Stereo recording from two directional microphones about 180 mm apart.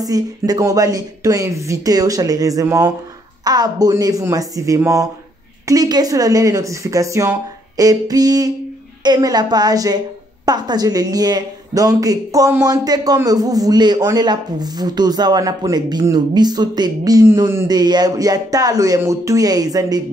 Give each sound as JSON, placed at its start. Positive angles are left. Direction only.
{"t": 0.0, "sound": "a man's voice", "side_deg": -20}